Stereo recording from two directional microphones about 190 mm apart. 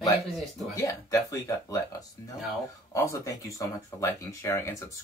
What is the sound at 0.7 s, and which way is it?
Speech, 15° left (ahead or behind).